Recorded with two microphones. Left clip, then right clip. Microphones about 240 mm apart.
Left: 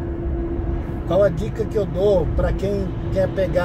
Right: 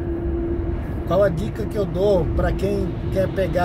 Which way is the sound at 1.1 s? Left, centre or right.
Centre.